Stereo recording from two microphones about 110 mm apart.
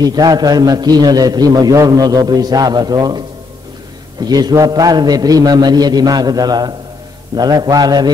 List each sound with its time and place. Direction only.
0.0 s a man's voice: 35° right (ahead or behind)